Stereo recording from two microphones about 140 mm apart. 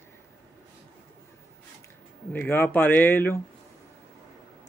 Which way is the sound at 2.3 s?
15° left (ahead or behind).